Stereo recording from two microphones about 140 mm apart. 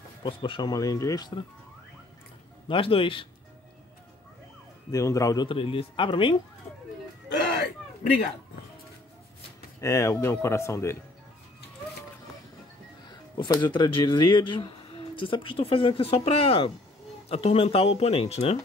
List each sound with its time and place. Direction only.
0.2 s speech: 35° left (ahead or behind)
2.7 s speech: 40° left (ahead or behind)
4.9 s speech: 20° left (ahead or behind)
5.5 s speech: 40° left (ahead or behind)
9.8 s speech: 20° left (ahead or behind)
13.1 s speech: 30° left (ahead or behind); by 18.6 s 50° left (ahead or behind)